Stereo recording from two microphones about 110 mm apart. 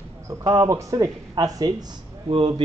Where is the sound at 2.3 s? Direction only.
60° right (ahead or behind).